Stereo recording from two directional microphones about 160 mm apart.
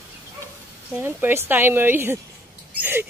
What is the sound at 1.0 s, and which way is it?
Speech, 10° right (ahead or behind).